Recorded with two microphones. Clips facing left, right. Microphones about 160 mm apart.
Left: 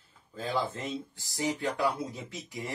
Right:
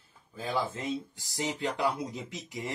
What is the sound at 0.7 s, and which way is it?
Speech, 15° right (ahead or behind).